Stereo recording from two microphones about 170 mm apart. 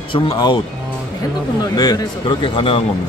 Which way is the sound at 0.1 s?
30° left (ahead or behind).